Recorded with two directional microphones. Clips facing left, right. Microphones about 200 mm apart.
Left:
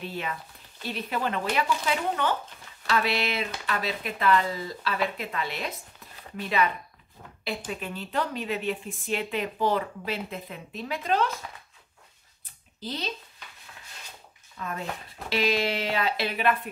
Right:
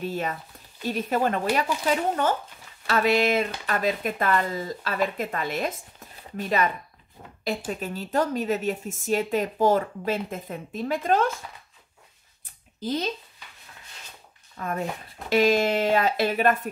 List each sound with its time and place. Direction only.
0.0 s a woman's voice: 45° right (ahead or behind)
12.8 s a woman's voice: 50° right (ahead or behind)
14.6 s a woman's voice: 50° right (ahead or behind)